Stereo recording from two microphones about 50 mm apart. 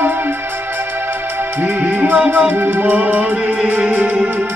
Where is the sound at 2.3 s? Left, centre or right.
Right.